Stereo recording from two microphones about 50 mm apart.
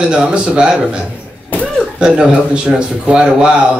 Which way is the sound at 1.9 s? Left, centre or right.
Centre.